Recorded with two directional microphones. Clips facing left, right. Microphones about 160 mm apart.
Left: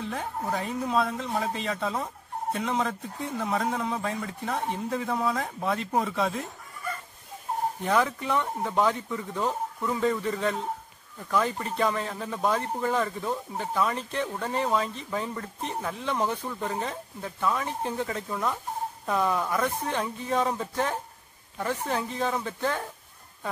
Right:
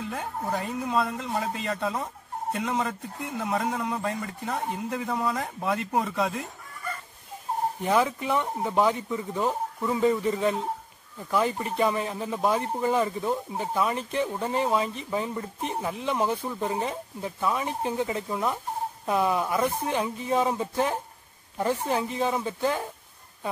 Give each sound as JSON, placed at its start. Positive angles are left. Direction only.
{"t": 0.1, "sound": "a man's voice", "side_deg": 0}
{"t": 7.9, "sound": "speech", "side_deg": -20}
{"t": 21.5, "sound": "speech", "side_deg": -25}
{"t": 21.9, "sound": "speech", "side_deg": -10}